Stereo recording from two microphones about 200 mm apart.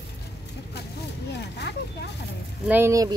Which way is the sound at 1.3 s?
55° left (ahead or behind).